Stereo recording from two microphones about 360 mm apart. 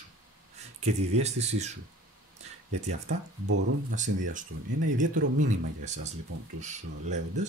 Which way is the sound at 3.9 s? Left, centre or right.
Right.